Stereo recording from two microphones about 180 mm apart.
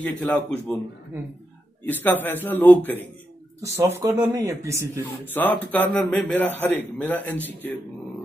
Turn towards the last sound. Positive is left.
turn(degrees=10)  # may be behind; listen again after turning